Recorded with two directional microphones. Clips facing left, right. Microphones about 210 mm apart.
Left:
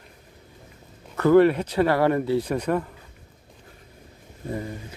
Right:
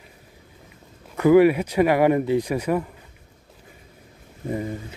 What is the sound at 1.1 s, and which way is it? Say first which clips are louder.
Speech: right 2 dB; 10° right (ahead or behind).